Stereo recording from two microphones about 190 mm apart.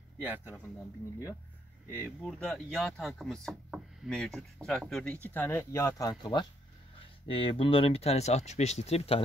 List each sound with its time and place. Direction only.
1.9 s speech: 10° left (ahead or behind); by 9.2 s 30° left (ahead or behind)